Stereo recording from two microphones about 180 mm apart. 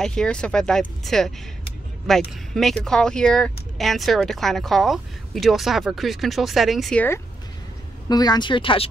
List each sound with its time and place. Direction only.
0.0 s speech: 5° left (ahead or behind)
8.1 s speech: 20° left (ahead or behind)